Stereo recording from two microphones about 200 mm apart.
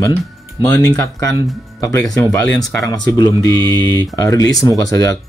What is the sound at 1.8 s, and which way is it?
Speech, 15° left (ahead or behind).